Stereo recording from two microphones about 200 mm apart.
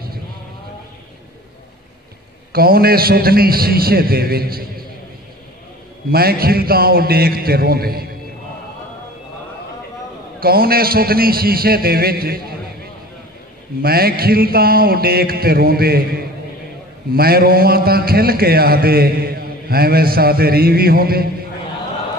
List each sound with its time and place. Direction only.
2.5 s a man's voice: 50° right (ahead or behind)
6.0 s a man's voice: 50° right (ahead or behind)
10.4 s a man's voice: 50° right (ahead or behind)
13.8 s a man's voice: 50° right (ahead or behind)